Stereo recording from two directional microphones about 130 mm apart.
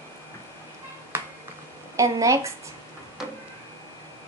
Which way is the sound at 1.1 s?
15° right (ahead or behind).